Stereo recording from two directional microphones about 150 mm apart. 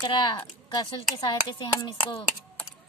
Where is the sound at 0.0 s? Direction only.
30° left (ahead or behind).